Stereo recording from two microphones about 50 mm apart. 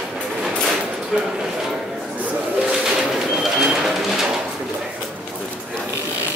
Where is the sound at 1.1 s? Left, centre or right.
Centre.